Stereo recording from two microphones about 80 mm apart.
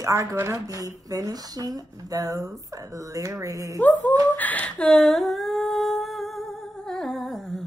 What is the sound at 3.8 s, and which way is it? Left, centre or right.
Speech, left.